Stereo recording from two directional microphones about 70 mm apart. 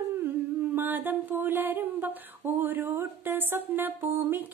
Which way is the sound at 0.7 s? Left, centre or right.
Right.